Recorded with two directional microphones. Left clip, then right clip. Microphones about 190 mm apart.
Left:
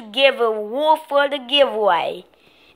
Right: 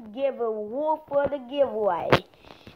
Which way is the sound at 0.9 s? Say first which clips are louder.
Left 7 dB; 5° left (ahead or behind).